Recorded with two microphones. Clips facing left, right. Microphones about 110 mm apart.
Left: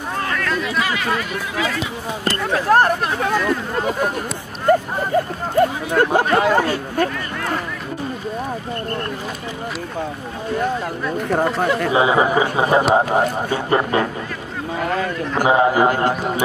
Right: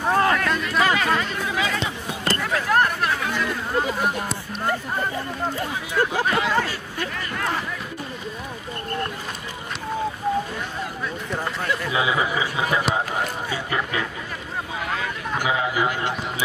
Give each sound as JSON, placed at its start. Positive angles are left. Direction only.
{"t": 2.4, "sound": "hubbub", "side_deg": 30}
{"t": 4.6, "sound": "hubbub", "side_deg": 55}
{"t": 11.2, "sound": "a man's voice", "side_deg": 55}
{"t": 11.9, "sound": "a man's voice", "side_deg": 40}